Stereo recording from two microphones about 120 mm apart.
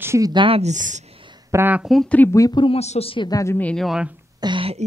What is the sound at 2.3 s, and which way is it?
Speech, 30° left (ahead or behind).